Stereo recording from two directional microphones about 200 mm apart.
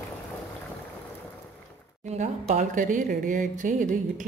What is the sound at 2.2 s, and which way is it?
A woman's voice, 40° right (ahead or behind).